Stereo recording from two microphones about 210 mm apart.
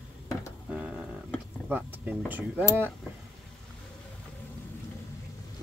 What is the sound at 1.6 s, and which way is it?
Speech, 10° right (ahead or behind).